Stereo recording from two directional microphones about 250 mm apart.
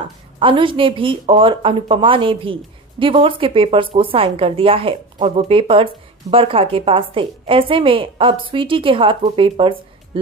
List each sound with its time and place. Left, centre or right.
0.4 s speech: centre